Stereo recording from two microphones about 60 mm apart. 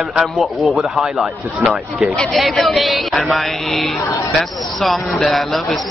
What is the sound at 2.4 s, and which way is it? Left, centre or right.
Speech, centre.